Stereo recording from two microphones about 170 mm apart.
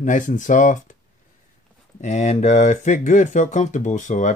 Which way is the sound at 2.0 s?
45° left (ahead or behind).